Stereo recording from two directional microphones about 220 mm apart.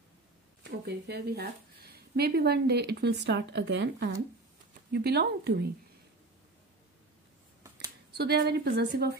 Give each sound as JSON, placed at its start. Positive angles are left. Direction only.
{"t": 0.7, "sound": "speech", "side_deg": -50}
{"t": 8.2, "sound": "speech", "side_deg": -45}